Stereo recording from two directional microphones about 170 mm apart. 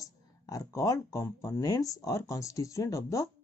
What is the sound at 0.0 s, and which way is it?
Speech, 20° left (ahead or behind).